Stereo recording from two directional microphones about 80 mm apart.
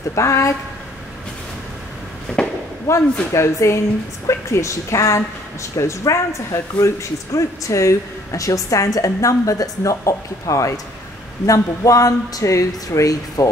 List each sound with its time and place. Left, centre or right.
0.1 s a woman's voice: left
2.4 s firecracker: centre
2.9 s a woman's voice: left